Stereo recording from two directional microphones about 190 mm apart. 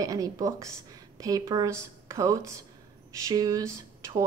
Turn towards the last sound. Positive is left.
turn(degrees=-15)  # may be behind; listen again after turning